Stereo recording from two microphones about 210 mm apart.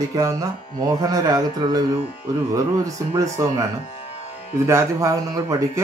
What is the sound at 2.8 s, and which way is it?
Speech, 15° right (ahead or behind).